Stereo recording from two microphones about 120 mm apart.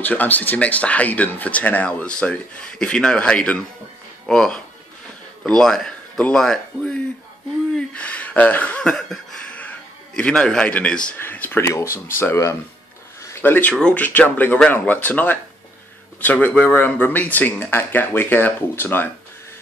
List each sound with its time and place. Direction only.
0.0 s speech: 15° left (ahead or behind)
7.7 s a sound: 10° left (ahead or behind)
11.1 s speech: 15° left (ahead or behind)